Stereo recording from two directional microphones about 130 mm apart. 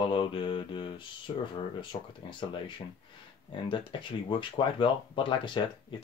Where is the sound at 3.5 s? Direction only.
40° left (ahead or behind).